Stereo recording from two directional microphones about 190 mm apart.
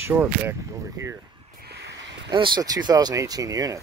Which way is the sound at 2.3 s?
25° right (ahead or behind).